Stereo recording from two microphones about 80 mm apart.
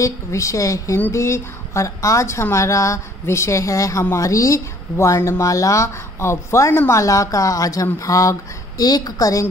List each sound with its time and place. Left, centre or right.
0.0 s a woman's voice: left